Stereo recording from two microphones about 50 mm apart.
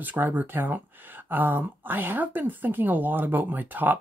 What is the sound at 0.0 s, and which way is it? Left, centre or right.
Speech, right.